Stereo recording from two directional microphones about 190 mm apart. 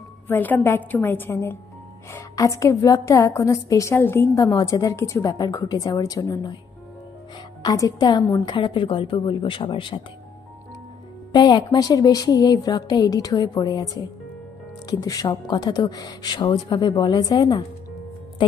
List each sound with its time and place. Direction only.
0.3 s a woman's voice: 10° left (ahead or behind)
7.6 s speech: 20° left (ahead or behind)
11.3 s speech: 25° left (ahead or behind)
14.9 s speech: 20° left (ahead or behind)